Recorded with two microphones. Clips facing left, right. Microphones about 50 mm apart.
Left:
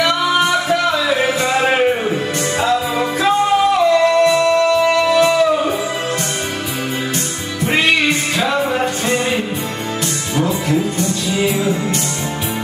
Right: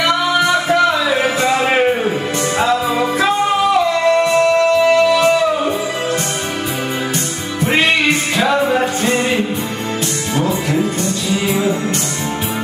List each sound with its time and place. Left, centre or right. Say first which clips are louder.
1.7 s music: right 1 dB; centre
4.2 s music: even; right
8.4 s music: right 4 dB; centre
10.3 s music: left 1 dB; right